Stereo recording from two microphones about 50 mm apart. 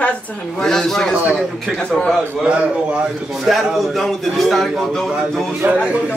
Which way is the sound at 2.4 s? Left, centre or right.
Right.